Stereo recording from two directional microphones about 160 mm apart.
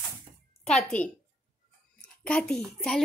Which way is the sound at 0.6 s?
5° left (ahead or behind).